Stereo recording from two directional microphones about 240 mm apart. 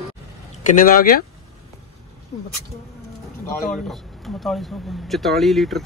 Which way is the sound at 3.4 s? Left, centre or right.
Centre.